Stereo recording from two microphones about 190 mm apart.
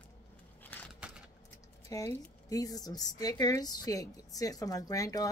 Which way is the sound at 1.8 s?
15° left (ahead or behind).